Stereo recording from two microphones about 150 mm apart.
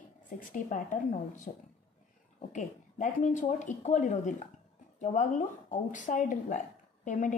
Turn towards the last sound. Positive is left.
turn(degrees=55)  # may be behind; listen again after turning